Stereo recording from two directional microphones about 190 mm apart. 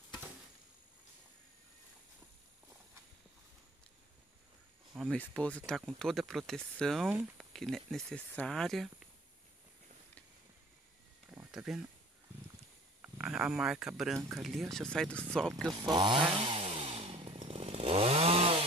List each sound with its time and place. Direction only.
5.1 s speech: 5° left (ahead or behind)
11.5 s speech: centre (ahead or behind)
13.0 s speech: 5° right (ahead or behind)
15.7 s chainsaw: 20° right (ahead or behind)